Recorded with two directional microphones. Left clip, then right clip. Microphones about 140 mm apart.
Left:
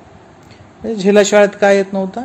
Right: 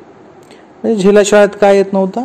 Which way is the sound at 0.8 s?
20° right (ahead or behind).